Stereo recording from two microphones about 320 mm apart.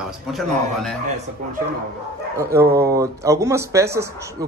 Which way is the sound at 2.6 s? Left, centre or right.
Right.